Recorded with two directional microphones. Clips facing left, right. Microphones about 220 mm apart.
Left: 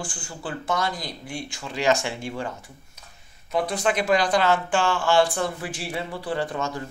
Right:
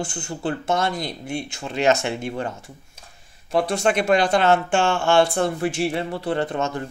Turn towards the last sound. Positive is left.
turn(degrees=-25)  # may be behind; listen again after turning